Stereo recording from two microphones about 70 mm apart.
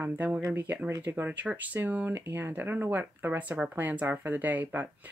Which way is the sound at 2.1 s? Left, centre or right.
Right.